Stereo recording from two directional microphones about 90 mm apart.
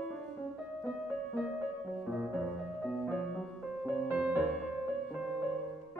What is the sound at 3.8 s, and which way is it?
Music, 15° right (ahead or behind).